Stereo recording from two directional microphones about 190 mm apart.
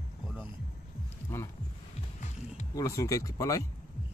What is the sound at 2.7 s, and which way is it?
Speech, 20° left (ahead or behind).